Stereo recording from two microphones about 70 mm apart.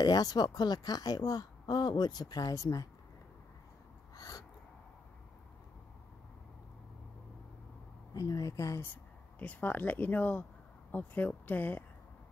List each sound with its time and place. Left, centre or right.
0.0 s speech: left
4.1 s a sound: left
8.1 s a woman's voice: left
9.4 s speech: left